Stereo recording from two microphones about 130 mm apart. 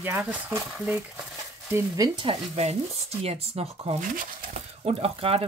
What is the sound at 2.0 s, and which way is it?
Sizzle, 40° right (ahead or behind).